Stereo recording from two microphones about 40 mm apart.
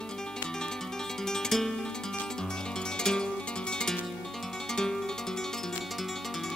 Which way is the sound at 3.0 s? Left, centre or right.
Centre.